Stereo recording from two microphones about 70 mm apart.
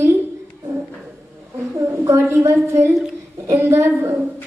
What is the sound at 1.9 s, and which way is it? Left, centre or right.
A woman's voice, right.